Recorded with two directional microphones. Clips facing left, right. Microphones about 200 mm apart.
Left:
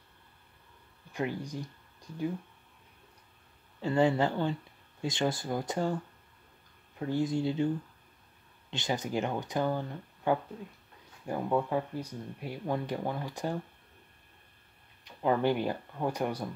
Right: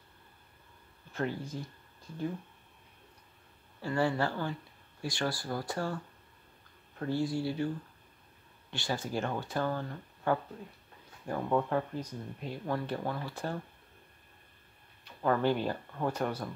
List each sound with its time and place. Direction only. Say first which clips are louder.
1.1 s speech: left 1 dB; 15° left (ahead or behind)
3.8 s speech: left 4 dB; 20° left (ahead or behind)
7.0 s speech: left 2 dB; 15° left (ahead or behind)
15.0 s speech: left 1 dB; 15° left (ahead or behind)